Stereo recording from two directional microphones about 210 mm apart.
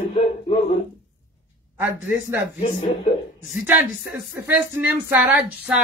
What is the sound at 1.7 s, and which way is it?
Speech, 10° right (ahead or behind).